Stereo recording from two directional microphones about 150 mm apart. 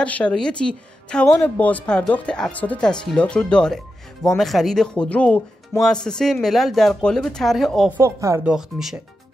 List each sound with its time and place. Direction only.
0.0 s speech: 10° left (ahead or behind)
8.0 s speech: 20° right (ahead or behind)
8.5 s speech: 5° right (ahead or behind)